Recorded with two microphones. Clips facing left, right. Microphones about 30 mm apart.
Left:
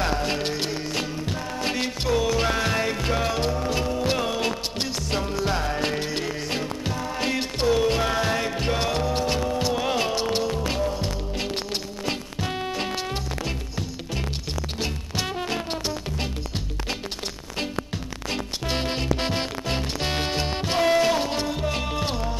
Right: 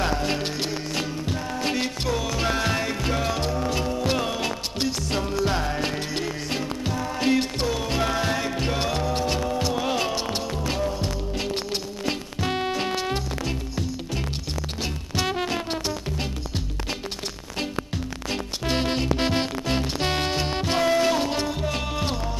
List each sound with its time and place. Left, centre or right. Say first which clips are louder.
0.0 s music: even; centre
12.4 s music: right 4 dB; right
12.7 s music: right 2 dB; centre
15.4 s music: right 1 dB; centre